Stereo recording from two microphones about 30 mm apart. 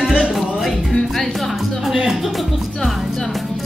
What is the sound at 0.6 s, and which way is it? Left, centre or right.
Speech, centre.